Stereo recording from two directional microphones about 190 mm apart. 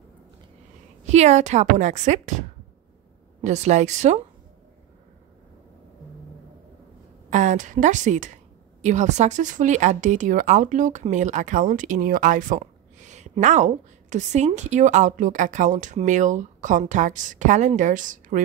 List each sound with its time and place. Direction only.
1.0 s speech: 35° right (ahead or behind)
3.4 s speech: 40° right (ahead or behind)
7.2 s speech: 40° right (ahead or behind)